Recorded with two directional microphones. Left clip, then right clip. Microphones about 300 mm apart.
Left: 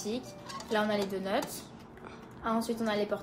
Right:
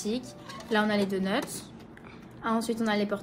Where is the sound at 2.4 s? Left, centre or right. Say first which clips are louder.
Right 3 dB; right.